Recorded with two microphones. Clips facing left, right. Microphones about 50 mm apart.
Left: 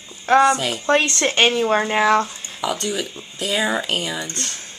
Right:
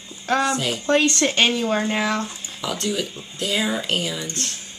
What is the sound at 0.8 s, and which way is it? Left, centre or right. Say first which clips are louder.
Speech: left 1 dB; left.